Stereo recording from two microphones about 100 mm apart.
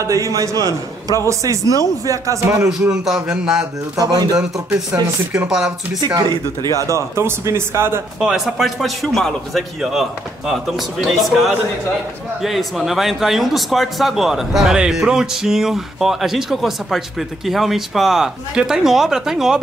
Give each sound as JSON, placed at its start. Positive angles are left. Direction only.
{"t": 0.0, "sound": "a man's voice", "side_deg": -35}
{"t": 2.8, "sound": "speech", "side_deg": -10}
{"t": 3.9, "sound": "a man's voice", "side_deg": -40}
{"t": 4.9, "sound": "speech", "side_deg": -20}
{"t": 6.0, "sound": "a man's voice", "side_deg": -40}
{"t": 7.2, "sound": "speech", "side_deg": -25}
{"t": 8.2, "sound": "speech", "side_deg": -5}